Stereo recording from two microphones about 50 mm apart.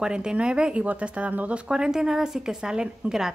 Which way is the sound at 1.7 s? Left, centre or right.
Centre.